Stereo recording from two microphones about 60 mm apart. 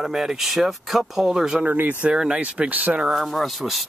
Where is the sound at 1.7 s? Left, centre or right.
Right.